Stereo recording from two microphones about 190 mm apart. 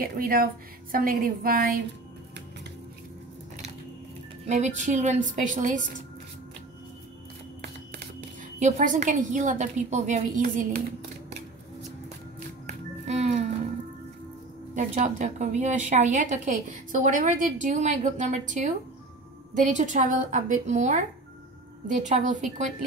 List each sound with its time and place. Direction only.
0.0 s a woman's voice: 50° right (ahead or behind)
4.5 s a woman's voice: 40° right (ahead or behind)
8.5 s a woman's voice: 40° right (ahead or behind)
12.6 s music: 35° right (ahead or behind)
14.8 s a woman's voice: 40° right (ahead or behind)
22.0 s a woman's voice: 40° right (ahead or behind)